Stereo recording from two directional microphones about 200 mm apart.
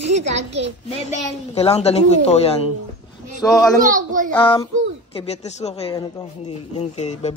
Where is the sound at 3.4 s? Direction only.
20° left (ahead or behind).